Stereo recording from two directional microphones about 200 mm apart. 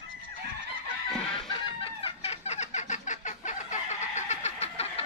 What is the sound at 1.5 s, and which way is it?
Chicken, 30° left (ahead or behind).